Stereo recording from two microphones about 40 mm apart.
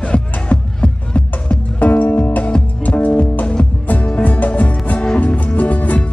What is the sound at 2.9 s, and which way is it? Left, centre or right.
Music, left.